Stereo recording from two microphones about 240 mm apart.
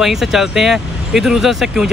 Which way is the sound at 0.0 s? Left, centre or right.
Centre.